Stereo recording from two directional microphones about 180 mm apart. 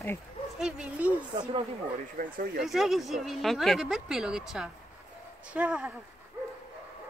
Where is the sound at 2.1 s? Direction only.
55° right (ahead or behind).